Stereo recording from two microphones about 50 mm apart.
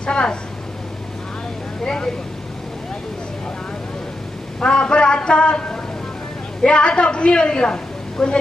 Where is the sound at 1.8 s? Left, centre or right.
Centre.